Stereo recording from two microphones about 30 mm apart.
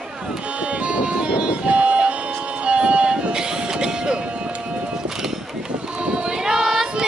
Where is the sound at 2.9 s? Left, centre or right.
Right.